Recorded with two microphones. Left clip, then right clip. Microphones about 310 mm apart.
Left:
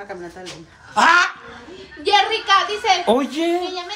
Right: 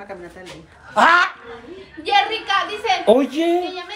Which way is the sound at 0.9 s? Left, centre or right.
Centre.